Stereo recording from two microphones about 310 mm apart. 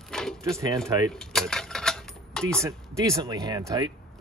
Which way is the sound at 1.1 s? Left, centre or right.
Centre.